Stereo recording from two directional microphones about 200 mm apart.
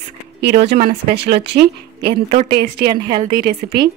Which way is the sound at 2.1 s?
25° right (ahead or behind).